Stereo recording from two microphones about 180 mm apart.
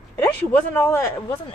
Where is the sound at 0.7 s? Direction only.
10° left (ahead or behind).